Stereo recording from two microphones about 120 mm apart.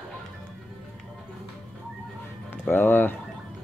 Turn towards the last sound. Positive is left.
turn(degrees=15)  # may be behind; listen again after turning